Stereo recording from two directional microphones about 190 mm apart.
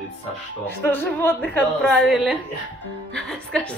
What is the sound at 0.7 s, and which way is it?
Speech, 10° left (ahead or behind).